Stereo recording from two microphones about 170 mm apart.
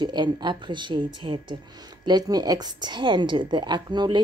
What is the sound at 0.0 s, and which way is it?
A woman's voice, 25° right (ahead or behind).